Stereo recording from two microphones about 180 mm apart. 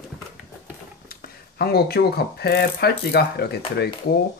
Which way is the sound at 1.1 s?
60° left (ahead or behind).